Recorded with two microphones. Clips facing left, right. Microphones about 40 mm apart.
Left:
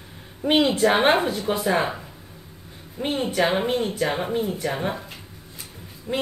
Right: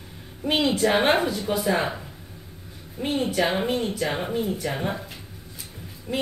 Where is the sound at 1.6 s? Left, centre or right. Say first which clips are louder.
Left 1 dB; centre.